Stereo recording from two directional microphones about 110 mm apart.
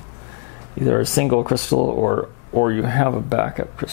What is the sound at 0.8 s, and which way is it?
Speech, 10° left (ahead or behind).